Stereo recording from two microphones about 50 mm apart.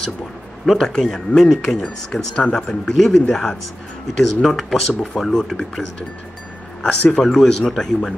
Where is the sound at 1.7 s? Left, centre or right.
Left.